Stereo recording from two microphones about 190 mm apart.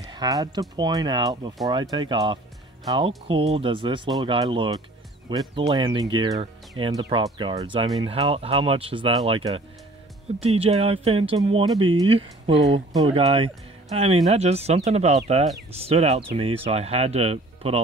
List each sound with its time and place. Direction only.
0.1 s speech: 20° right (ahead or behind)
3.5 s speech: 25° right (ahead or behind)